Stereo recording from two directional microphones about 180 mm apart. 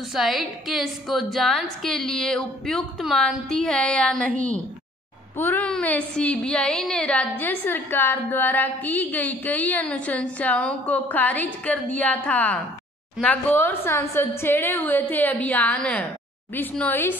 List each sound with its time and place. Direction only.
0.1 s a woman's voice: centre (ahead or behind)
5.4 s a woman's voice: 10° left (ahead or behind)